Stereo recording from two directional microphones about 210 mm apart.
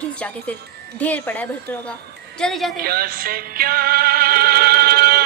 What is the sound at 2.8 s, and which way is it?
Music, 45° right (ahead or behind).